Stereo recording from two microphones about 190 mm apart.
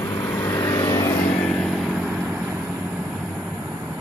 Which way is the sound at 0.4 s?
15° left (ahead or behind).